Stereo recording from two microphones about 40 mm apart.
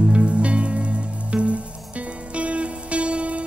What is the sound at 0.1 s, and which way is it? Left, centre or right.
Music, right.